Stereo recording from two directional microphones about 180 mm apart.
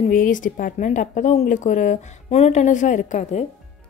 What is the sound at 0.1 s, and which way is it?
A woman's voice, 50° left (ahead or behind).